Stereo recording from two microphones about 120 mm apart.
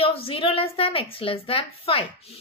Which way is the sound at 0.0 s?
50° left (ahead or behind).